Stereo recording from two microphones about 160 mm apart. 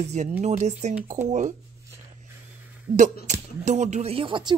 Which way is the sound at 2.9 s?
50° right (ahead or behind).